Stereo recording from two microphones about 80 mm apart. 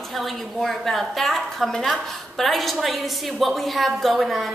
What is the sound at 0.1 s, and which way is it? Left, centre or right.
A woman's voice, centre.